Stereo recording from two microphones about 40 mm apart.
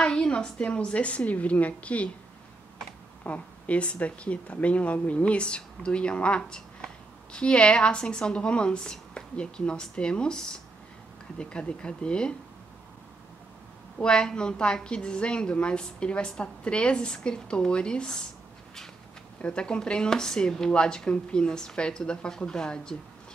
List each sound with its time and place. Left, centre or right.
0.0 s a sound: left
0.6 s speech: left
3.3 s a woman's voice: left
13.9 s a woman's voice: left
19.4 s a woman's voice: left